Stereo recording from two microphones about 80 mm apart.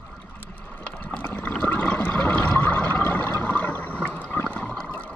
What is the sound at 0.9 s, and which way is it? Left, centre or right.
Water, centre.